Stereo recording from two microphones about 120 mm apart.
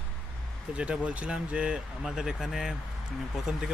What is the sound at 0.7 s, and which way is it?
Speech, 10° right (ahead or behind).